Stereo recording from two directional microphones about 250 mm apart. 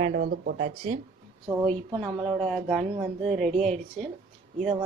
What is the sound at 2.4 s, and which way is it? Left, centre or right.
Speech, centre.